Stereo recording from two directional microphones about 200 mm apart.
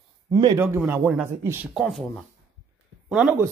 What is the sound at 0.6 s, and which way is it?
Speech, 10° right (ahead or behind).